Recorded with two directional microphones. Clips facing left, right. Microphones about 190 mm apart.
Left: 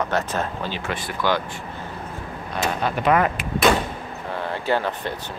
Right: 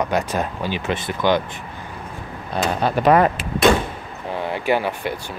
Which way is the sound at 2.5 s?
35° right (ahead or behind).